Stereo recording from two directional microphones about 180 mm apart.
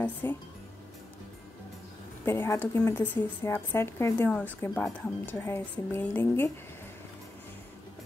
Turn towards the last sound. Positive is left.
turn(degrees=10)  # may be behind; listen again after turning